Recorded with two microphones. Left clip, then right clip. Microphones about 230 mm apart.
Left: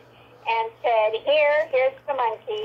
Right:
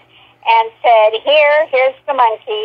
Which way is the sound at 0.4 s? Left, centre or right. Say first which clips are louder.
Right 12 dB; right.